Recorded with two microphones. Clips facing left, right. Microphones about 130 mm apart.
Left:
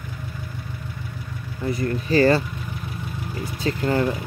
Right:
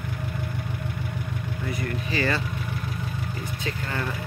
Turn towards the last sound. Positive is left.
turn(degrees=35)  # may be behind; listen again after turning